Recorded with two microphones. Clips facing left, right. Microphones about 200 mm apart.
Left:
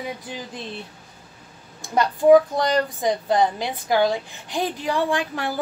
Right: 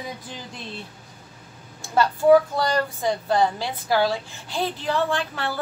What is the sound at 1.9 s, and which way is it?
A woman's voice, 15° left (ahead or behind).